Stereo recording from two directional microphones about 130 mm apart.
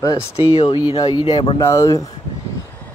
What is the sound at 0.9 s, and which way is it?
Speech, 40° left (ahead or behind).